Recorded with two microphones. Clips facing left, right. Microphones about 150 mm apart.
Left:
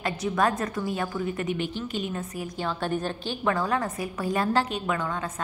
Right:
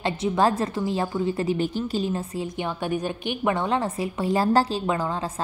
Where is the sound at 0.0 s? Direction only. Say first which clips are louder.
Right 3 dB; 25° right (ahead or behind).